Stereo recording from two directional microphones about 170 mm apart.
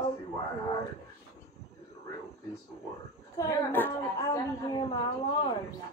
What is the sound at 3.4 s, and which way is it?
A woman's voice, 15° left (ahead or behind).